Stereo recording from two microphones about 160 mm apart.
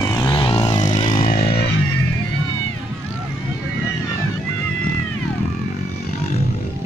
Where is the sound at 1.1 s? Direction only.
60° left (ahead or behind); by 1.6 s 75° left (ahead or behind).